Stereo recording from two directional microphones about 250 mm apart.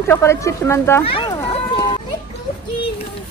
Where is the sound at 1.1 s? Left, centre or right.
Centre.